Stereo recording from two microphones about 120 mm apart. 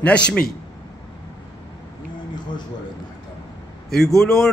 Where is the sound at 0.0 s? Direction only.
10° left (ahead or behind).